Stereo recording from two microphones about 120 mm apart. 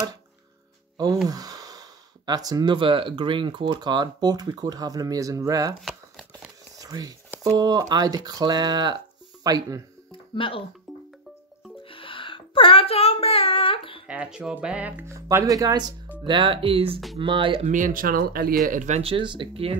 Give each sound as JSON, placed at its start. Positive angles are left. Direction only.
{"t": 0.9, "sound": "speech", "side_deg": -30}
{"t": 5.8, "sound": "crumpling", "side_deg": 0}
{"t": 6.8, "sound": "speech", "side_deg": -30}
{"t": 10.1, "sound": "music", "side_deg": 45}
{"t": 10.9, "sound": "music", "side_deg": 0}
{"t": 11.8, "sound": "music", "side_deg": 45}
{"t": 14.0, "sound": "speech", "side_deg": -10}
{"t": 15.4, "sound": "speech", "side_deg": -30}
{"t": 16.3, "sound": "speech", "side_deg": -45}
{"t": 17.6, "sound": "speech", "side_deg": -90}
{"t": 18.8, "sound": "speech", "side_deg": -75}
{"t": 19.0, "sound": "speech", "side_deg": -45}